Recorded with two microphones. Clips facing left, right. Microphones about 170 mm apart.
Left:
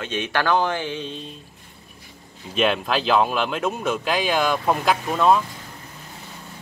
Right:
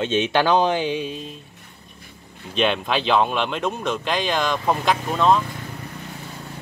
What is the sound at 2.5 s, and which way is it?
Speech, centre (ahead or behind).